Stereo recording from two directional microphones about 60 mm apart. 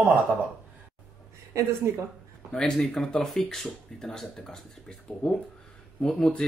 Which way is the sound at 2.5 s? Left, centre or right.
Centre.